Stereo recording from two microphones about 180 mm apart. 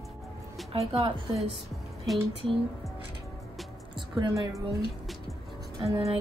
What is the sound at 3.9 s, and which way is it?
Speech, 25° right (ahead or behind).